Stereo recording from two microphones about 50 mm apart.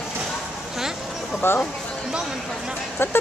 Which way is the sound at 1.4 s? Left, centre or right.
Left.